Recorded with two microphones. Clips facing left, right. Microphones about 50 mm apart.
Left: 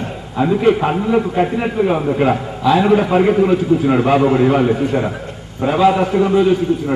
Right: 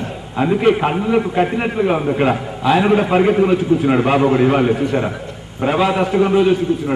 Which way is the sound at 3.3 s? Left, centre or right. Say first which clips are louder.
Left 1 dB; right.